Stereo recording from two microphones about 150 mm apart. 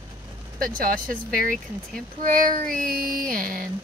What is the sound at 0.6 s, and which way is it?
Speech, 70° right (ahead or behind).